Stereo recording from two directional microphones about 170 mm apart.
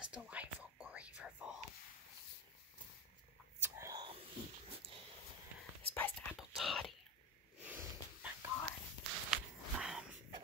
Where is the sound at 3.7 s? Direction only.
20° right (ahead or behind).